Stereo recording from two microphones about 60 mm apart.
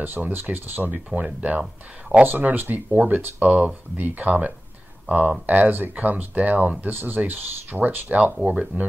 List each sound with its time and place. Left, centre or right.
0.0 s speech: right; by 2.2 s centre
2.2 s speech: right
3.4 s speech: centre
3.9 s speech: right
8.2 s speech: right